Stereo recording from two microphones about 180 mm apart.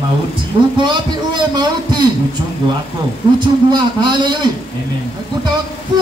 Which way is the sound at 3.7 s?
25° right (ahead or behind).